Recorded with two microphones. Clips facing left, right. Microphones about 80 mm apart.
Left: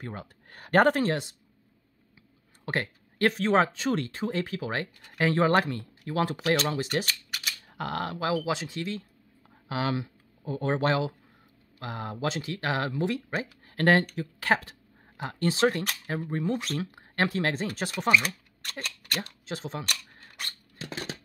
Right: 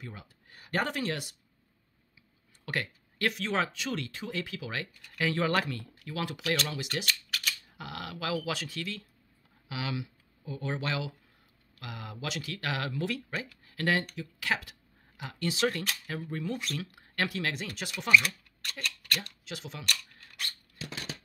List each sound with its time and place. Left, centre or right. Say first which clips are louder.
0.0 s speech: left 7 dB; left
2.6 s speech: left 4 dB; left
7.1 s a sound: right 1 dB; centre
7.6 s speech: left 9 dB; left
9.7 s speech: left 7 dB; left
13.3 s speech: left 5 dB; left
19.9 s a sound: even; left